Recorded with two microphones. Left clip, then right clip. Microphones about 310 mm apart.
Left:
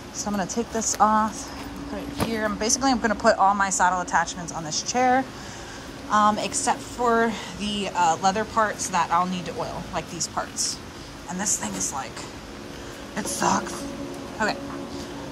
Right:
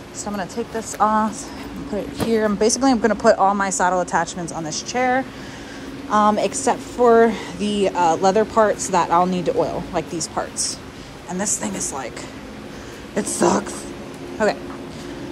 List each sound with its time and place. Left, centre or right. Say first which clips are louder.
0.2 s a woman's voice: right 1 dB; centre
2.4 s a woman's voice: right 4 dB; centre
13.1 s a woman's voice: right 5 dB; centre